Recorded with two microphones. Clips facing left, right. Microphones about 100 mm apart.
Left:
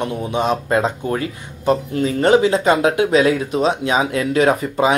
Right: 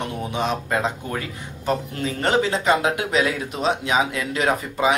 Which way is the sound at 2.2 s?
15° left (ahead or behind).